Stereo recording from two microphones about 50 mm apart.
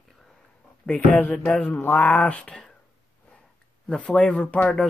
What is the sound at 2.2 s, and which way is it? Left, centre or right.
Speech, left.